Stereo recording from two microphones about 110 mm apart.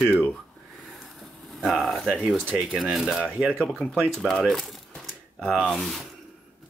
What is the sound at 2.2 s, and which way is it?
Speech, 10° left (ahead or behind).